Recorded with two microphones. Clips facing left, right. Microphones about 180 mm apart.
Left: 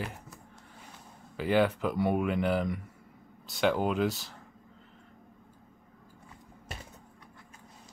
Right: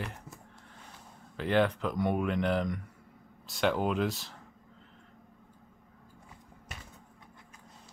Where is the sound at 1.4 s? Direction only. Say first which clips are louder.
Left 1 dB; 5° left (ahead or behind).